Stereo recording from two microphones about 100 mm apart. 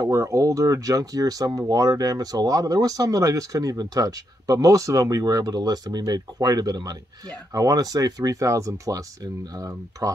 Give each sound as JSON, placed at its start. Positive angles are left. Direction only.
{"t": 0.0, "sound": "speech", "side_deg": -30}